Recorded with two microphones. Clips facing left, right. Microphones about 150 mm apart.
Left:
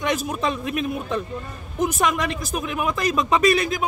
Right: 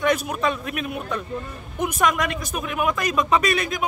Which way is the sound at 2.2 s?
35° left (ahead or behind).